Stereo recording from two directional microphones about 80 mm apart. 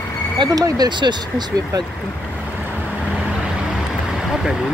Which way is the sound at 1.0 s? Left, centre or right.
Right.